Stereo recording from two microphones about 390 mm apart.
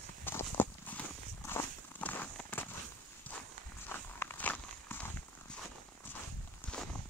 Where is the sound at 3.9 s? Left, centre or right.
Centre.